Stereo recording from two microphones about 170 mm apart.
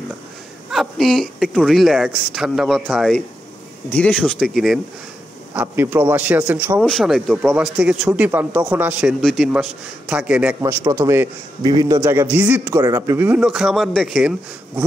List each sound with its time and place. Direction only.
0.7 s speech: centre (ahead or behind)
5.5 s a man's voice: 10° right (ahead or behind)
6.8 s speech: centre (ahead or behind)
10.6 s a man's voice: 20° right (ahead or behind)
13.4 s speech: centre (ahead or behind)